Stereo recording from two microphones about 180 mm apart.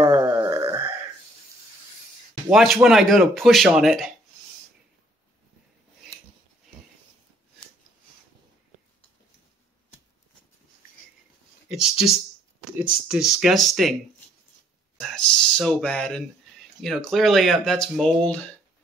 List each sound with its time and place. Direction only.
0.0 s a sound: 20° right (ahead or behind)
2.5 s speech: centre (ahead or behind)
11.7 s speech: centre (ahead or behind)
13.1 s speech: centre (ahead or behind)
15.0 s speech: centre (ahead or behind)